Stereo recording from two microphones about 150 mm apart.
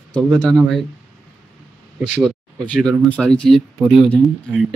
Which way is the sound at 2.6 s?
5° left (ahead or behind).